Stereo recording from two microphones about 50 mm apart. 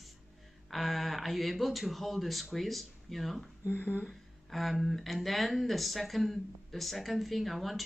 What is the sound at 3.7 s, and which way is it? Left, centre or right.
Speech, left.